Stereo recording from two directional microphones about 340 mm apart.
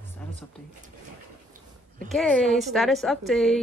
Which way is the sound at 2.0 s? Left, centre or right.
Centre.